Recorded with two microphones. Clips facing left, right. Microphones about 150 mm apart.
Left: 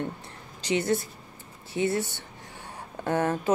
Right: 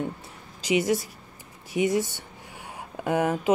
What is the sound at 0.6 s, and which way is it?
Speech, 10° right (ahead or behind).